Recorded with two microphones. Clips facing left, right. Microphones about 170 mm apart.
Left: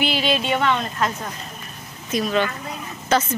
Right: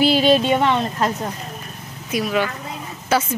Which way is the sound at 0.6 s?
25° right (ahead or behind).